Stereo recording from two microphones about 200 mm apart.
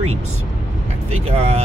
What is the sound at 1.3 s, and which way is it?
Speech, 30° right (ahead or behind).